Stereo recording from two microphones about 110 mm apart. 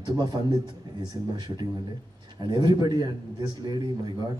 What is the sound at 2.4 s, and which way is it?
A man's voice, 35° right (ahead or behind).